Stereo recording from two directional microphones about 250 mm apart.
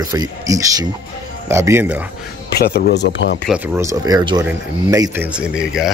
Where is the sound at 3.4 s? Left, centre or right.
Centre.